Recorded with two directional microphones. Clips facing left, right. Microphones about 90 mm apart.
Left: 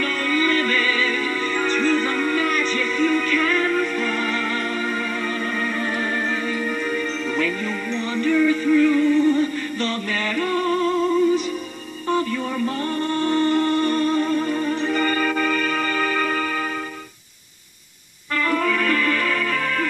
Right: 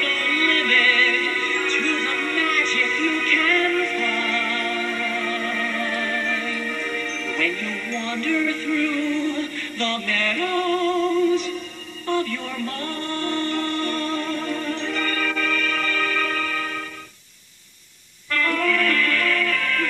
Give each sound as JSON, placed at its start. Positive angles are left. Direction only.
{"t": 0.0, "sound": "music", "side_deg": 25}
{"t": 7.3, "sound": "music", "side_deg": 20}
{"t": 18.3, "sound": "music", "side_deg": 20}